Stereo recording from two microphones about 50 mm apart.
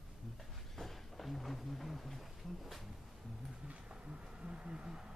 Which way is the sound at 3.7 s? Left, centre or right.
Centre.